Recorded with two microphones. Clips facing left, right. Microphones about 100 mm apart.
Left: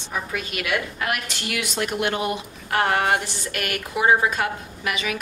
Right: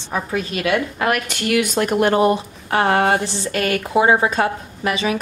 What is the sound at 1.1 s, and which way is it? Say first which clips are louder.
Speech: right 11 dB; 50° right (ahead or behind).